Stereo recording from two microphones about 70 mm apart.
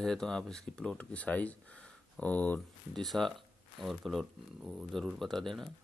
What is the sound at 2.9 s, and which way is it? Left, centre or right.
Speech, centre.